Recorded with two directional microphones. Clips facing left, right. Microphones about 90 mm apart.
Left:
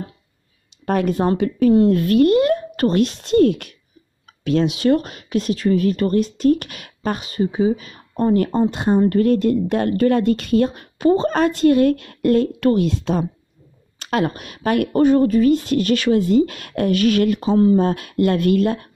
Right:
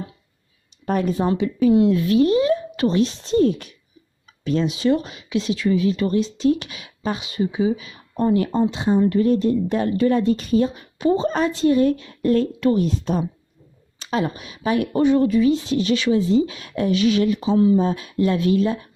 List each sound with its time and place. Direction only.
0.8 s a woman's voice: 70° left (ahead or behind); by 9.0 s 50° left (ahead or behind)
9.1 s a woman's voice: 65° left (ahead or behind); by 13.3 s 80° left
13.9 s speech: 60° left (ahead or behind)
15.0 s speech: 45° left (ahead or behind)
17.7 s a woman's voice: 65° left (ahead or behind)